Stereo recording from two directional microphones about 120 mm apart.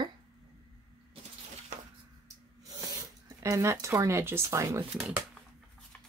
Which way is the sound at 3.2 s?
25° right (ahead or behind).